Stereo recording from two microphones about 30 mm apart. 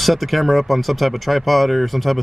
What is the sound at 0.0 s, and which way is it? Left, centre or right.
Speech, centre.